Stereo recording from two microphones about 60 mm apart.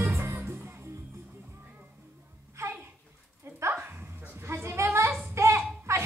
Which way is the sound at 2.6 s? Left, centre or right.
Right.